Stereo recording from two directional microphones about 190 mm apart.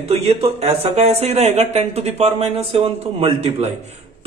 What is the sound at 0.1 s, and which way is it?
Speech, 35° right (ahead or behind).